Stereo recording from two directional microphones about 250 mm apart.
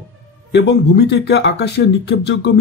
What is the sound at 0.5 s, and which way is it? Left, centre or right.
Speech, left.